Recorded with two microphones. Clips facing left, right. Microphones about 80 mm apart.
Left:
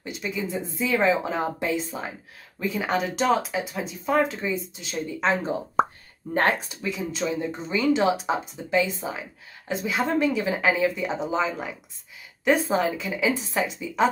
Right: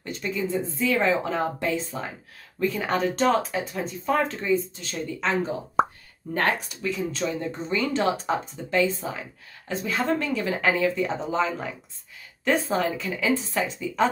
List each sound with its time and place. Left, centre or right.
0.0 s speech: centre
2.6 s speech: centre; by 5.5 s left
5.8 s plop: centre
6.3 s speech: left